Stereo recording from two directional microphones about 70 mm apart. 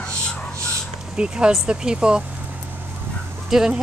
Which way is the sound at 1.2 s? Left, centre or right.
Centre.